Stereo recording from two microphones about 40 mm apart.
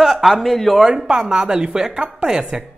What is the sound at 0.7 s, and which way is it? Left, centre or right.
Speech, centre.